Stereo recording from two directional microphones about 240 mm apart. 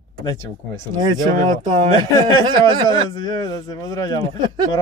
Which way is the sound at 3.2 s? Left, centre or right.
Centre.